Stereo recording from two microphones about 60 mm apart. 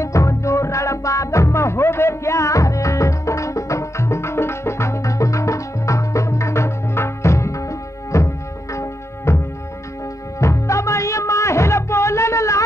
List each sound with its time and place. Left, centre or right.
0.0 s music: left
10.4 s music: left